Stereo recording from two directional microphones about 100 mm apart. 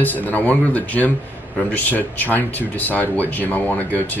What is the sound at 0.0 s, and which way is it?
Speech, 15° left (ahead or behind).